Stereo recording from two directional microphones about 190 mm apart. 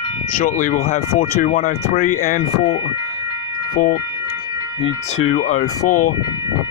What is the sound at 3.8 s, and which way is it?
Speech, 50° left (ahead or behind).